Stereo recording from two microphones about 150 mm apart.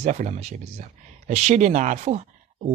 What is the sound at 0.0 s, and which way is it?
Speech, 50° right (ahead or behind).